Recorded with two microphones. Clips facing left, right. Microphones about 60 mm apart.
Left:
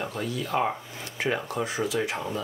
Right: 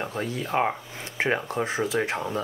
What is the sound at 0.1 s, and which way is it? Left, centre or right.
Speech, right.